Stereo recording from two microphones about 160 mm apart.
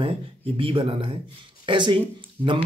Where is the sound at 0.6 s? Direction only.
35° right (ahead or behind).